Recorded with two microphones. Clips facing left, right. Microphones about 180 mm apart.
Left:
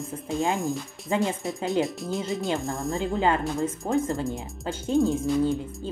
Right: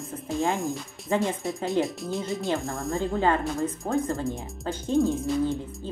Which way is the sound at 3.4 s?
Centre (ahead or behind).